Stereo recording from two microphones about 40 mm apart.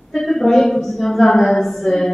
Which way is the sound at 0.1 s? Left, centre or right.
Centre.